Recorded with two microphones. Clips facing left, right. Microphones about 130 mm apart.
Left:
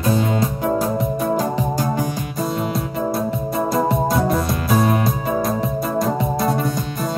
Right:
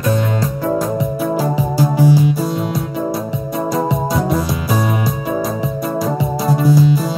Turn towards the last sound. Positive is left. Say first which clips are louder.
# right 9 dB
turn(degrees=0)  # may be behind; listen again after turning